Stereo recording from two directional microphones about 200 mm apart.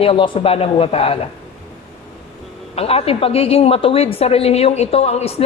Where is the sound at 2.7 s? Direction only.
30° left (ahead or behind).